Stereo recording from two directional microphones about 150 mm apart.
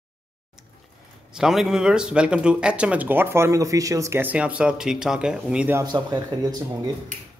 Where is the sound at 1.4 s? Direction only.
5° right (ahead or behind).